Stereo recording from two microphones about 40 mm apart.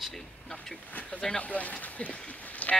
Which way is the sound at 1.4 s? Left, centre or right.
Left.